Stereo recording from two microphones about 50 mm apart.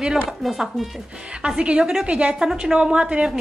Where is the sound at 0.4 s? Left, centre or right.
Centre.